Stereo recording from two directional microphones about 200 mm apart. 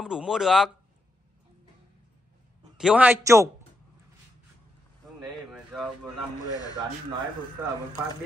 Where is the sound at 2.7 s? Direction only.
5° right (ahead or behind).